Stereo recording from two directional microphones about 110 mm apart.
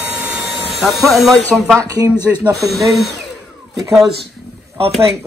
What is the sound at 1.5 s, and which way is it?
Speech, centre (ahead or behind).